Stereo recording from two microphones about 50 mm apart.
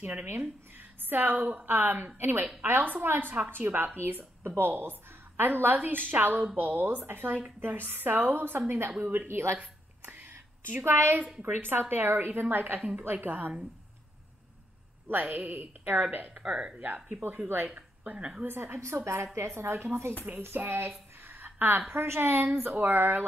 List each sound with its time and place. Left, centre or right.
0.0 s a woman's voice: right
1.4 s a woman's voice: right
1.7 s a woman's voice: right
9.3 s a sound: right
10.8 s a woman's voice: right
11.4 s a woman's voice: right
15.0 s speech: right
16.3 s speech: centre
16.8 s speech: right
17.7 s a woman's voice: right
18.4 s a woman's voice: right
21.2 s a sound: right
21.5 s a woman's voice: right